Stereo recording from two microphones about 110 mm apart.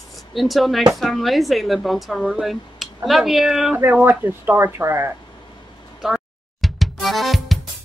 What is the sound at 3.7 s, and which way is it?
Speech, 20° right (ahead or behind).